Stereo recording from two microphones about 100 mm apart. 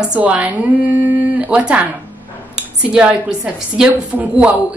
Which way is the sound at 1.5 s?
10° right (ahead or behind).